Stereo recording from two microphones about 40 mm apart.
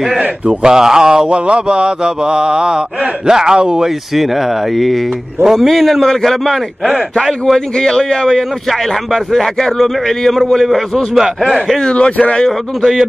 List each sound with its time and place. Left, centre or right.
0.5 s speech: centre
1.3 s mantra: right
3.3 s speech: centre
4.7 s a man's voice: centre
7.5 s a man's voice: centre
11.1 s speech: centre
11.8 s speech: left